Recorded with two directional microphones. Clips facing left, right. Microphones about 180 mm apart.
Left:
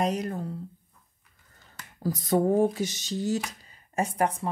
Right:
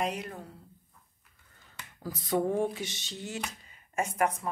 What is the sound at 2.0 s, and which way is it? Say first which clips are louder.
A woman's voice: left 5 dB; 40° left (ahead or behind).